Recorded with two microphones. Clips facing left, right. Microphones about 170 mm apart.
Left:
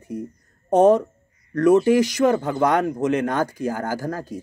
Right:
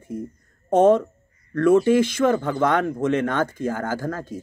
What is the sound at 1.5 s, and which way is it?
A man's voice, 40° left (ahead or behind).